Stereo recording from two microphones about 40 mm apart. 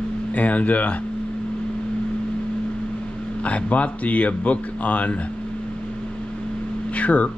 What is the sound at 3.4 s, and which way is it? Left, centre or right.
Speech, left.